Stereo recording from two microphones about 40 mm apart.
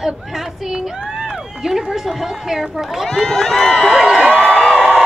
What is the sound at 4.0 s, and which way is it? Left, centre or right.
Crowd, centre.